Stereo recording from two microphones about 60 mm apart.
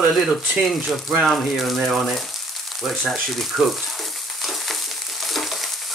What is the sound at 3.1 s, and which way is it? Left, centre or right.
Frying, centre.